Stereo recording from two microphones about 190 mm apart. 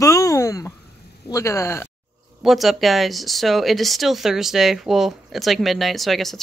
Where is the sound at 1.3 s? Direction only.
15° left (ahead or behind).